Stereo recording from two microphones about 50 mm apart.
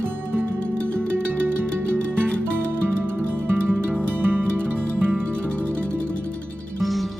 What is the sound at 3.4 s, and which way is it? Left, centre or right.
Music, right.